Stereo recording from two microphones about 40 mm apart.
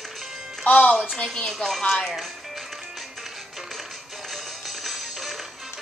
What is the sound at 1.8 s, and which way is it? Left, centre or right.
Speech, left.